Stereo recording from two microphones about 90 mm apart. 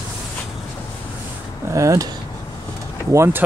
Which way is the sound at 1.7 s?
35° right (ahead or behind).